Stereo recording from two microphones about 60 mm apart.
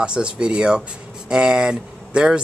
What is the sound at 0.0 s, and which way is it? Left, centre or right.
A man's voice, centre.